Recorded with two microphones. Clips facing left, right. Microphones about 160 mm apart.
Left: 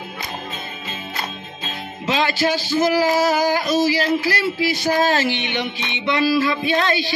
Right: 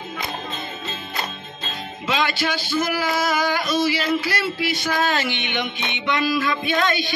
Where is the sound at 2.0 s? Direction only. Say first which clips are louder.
Left 3 dB; 40° left (ahead or behind).